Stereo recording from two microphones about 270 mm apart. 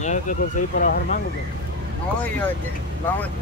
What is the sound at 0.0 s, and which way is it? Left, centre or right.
Speech, left.